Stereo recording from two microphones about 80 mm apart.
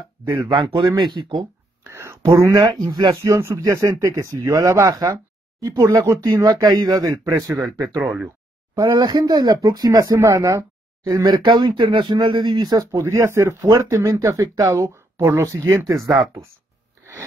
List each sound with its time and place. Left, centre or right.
0.4 s speech: right
0.9 s speech: right
1.9 s whispering: right
2.5 s speech: right
3.2 s speech: right
6.2 s speech: right
8.0 s speech: centre
8.8 s speech: right
9.2 s speech: right
11.1 s speech: right
13.0 s speech: right